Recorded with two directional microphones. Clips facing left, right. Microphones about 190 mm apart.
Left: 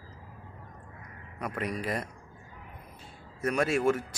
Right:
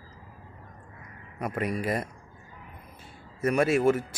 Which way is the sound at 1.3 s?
50° right (ahead or behind).